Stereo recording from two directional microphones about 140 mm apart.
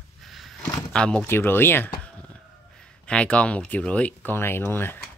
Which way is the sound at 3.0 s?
10° left (ahead or behind).